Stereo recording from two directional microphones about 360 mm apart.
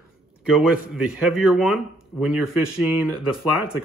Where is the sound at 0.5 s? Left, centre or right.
Centre.